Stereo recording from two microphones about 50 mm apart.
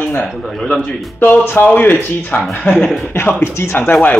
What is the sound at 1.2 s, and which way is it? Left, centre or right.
Speech, left.